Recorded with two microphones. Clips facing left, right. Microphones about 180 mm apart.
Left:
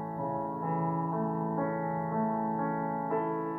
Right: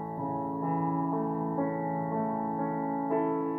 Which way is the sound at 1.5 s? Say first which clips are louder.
Right 2 dB; 15° right (ahead or behind).